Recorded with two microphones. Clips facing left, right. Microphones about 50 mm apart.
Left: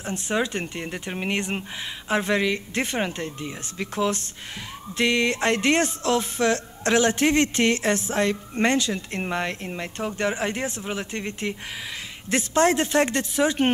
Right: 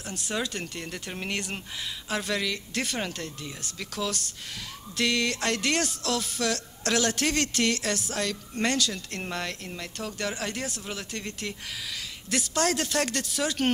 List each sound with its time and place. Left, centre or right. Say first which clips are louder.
0.0 s speech: left 6 dB; left